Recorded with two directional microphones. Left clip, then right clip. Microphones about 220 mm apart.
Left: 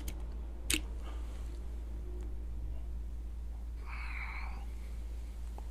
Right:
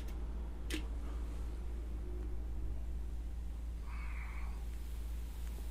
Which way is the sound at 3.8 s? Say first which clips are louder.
Left 8 dB; 30° left (ahead or behind).